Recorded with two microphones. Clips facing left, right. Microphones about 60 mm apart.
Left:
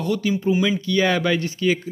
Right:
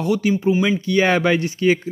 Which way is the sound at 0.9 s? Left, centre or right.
Right.